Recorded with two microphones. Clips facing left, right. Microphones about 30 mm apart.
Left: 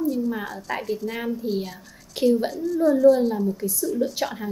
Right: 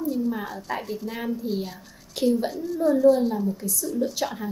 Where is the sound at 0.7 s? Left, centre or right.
Centre.